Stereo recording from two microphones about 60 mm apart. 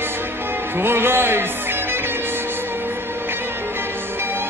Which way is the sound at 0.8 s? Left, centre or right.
Right.